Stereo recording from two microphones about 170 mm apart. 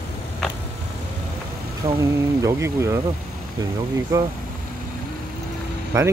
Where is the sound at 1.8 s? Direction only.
20° right (ahead or behind).